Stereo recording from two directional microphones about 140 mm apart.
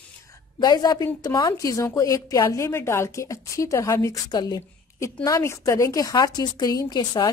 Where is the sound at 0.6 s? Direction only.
30° left (ahead or behind).